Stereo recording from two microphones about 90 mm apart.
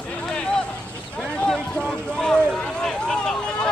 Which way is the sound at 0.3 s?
10° left (ahead or behind).